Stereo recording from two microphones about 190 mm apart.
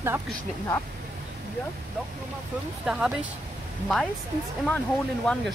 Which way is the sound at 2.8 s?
5° right (ahead or behind).